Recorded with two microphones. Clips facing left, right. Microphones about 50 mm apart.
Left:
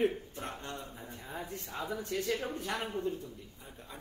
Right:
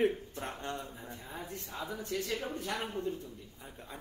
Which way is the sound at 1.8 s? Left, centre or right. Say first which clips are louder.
Left 1 dB; left.